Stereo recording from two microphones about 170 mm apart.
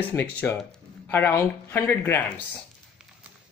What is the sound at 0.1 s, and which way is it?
Speech, 10° left (ahead or behind).